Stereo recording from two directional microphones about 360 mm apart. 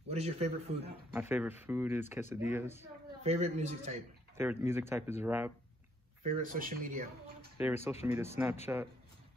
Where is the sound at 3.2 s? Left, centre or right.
Centre.